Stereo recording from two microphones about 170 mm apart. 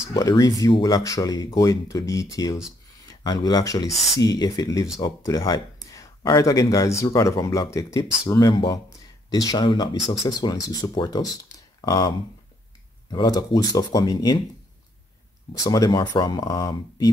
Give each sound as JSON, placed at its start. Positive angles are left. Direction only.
{"t": 0.0, "sound": "speech", "side_deg": 20}
{"t": 13.1, "sound": "speech", "side_deg": 25}
{"t": 15.6, "sound": "speech", "side_deg": 20}